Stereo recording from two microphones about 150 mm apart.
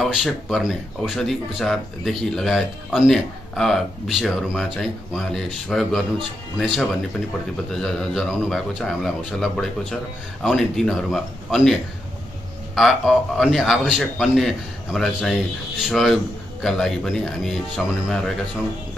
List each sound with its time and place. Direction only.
0.0 s speech: centre (ahead or behind)
12.7 s speech: centre (ahead or behind)